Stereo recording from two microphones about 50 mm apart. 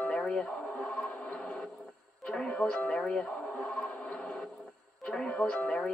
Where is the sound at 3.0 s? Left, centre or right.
Centre.